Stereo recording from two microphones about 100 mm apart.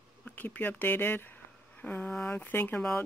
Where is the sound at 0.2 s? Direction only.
15° left (ahead or behind).